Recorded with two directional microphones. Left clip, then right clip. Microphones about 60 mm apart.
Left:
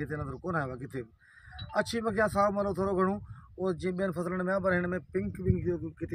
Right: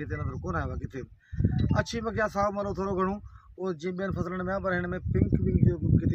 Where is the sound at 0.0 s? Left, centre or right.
Centre.